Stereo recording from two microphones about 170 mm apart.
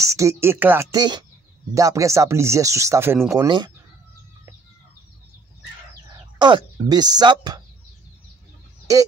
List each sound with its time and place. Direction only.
0.0 s speech: 20° right (ahead or behind)
0.9 s speech: 25° right (ahead or behind)
6.1 s speech: 25° right (ahead or behind)